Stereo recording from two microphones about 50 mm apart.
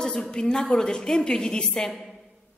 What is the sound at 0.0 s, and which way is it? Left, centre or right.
A woman's voice, centre.